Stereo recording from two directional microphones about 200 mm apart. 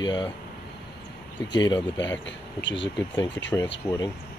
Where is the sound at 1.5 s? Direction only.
20° left (ahead or behind).